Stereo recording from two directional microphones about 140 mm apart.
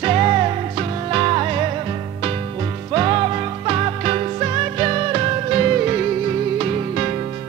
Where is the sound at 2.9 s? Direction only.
35° right (ahead or behind).